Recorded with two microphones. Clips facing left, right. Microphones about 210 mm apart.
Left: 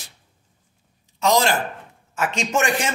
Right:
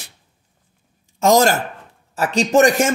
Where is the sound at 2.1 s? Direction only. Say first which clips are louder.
Right 7 dB; 35° right (ahead or behind).